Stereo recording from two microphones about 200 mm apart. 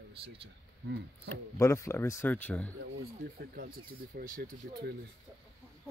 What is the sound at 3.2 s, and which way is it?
Speech, 50° right (ahead or behind).